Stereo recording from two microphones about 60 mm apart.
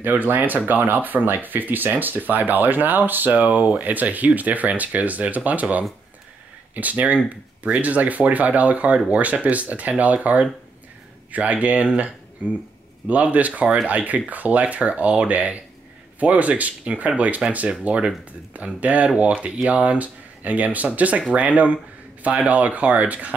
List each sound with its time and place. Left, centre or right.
0.0 s speech: right
13.1 s speech: right